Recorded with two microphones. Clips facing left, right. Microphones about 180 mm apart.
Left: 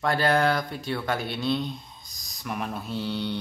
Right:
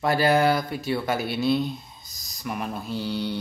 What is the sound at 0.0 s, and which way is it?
Speech, 10° right (ahead or behind).